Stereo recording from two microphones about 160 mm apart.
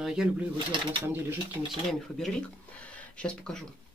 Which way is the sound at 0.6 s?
30° right (ahead or behind).